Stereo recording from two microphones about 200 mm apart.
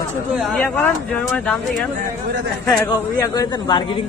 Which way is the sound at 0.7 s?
5° left (ahead or behind).